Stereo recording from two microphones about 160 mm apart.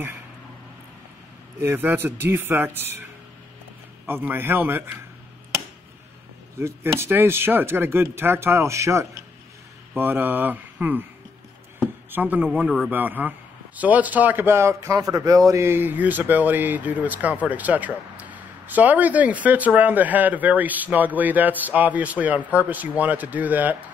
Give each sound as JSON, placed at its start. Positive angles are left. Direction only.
{"t": 1.6, "sound": "speech", "side_deg": -15}
{"t": 4.1, "sound": "speech", "side_deg": -15}
{"t": 6.6, "sound": "speech", "side_deg": -15}
{"t": 12.1, "sound": "speech", "side_deg": -10}